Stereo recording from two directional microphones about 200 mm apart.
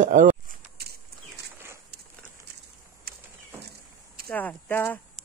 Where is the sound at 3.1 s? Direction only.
50° right (ahead or behind).